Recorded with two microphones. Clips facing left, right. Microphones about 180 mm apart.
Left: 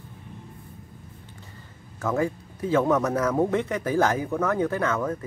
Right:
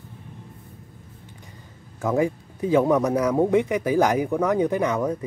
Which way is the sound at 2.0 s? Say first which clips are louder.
Right 3 dB; 15° right (ahead or behind).